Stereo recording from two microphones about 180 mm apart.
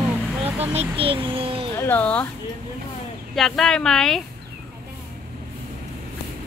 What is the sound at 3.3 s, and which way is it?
Speech, centre (ahead or behind).